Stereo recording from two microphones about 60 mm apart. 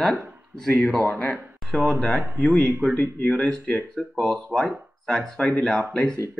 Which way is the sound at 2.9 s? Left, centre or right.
Left.